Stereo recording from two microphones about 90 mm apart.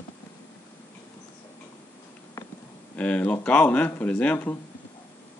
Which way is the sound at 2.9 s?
15° left (ahead or behind).